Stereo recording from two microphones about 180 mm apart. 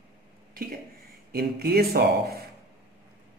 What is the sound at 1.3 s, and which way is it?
A man's voice, 60° right (ahead or behind).